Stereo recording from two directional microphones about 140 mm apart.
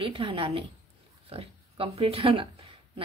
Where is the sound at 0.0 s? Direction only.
40° right (ahead or behind).